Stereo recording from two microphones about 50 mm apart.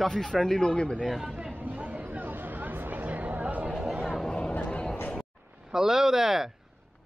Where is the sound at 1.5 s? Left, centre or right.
Right.